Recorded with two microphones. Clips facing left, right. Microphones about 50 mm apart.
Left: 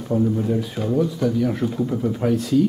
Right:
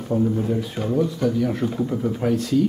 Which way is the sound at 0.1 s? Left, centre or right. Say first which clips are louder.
Left 1 dB; centre.